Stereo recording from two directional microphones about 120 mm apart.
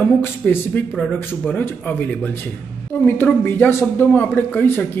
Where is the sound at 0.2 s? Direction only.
15° left (ahead or behind).